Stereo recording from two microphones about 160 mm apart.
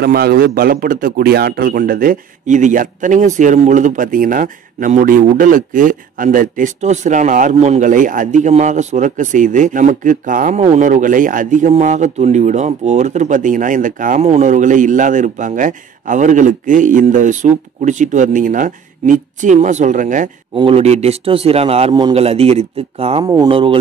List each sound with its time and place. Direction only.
0.0 s a man's voice: 75° right (ahead or behind); by 14.2 s 55° right (ahead or behind)
14.2 s a man's voice: 45° right (ahead or behind)
20.5 s a man's voice: 35° right (ahead or behind)
23.2 s speech: 25° right (ahead or behind)